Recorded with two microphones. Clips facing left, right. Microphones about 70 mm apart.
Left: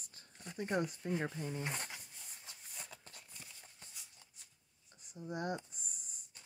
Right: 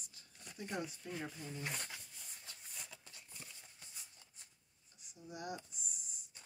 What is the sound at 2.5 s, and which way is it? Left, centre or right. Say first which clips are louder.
Shuffle: even; centre.